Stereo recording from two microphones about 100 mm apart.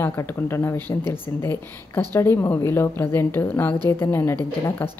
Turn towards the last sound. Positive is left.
turn(degrees=25)  # may be behind; listen again after turning